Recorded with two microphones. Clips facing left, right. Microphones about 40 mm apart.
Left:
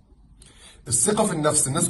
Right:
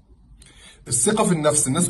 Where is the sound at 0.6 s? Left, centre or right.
Right.